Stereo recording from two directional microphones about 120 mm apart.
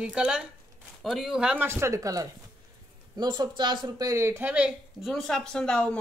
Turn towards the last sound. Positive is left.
turn(degrees=5)  # may be behind; listen again after turning